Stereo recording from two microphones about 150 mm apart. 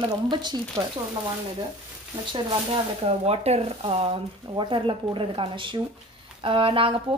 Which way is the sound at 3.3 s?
45° right (ahead or behind).